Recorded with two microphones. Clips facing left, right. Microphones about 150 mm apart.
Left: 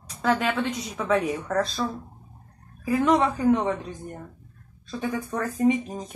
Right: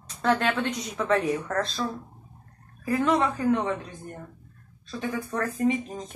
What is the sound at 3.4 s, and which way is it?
Speech, 15° left (ahead or behind).